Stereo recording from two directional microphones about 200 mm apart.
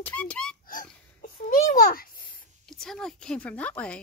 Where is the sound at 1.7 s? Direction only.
45° left (ahead or behind).